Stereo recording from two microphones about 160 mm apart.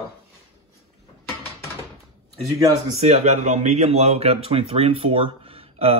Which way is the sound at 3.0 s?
45° right (ahead or behind).